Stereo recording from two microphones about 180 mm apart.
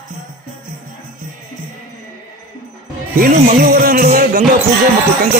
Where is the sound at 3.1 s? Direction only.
50° right (ahead or behind).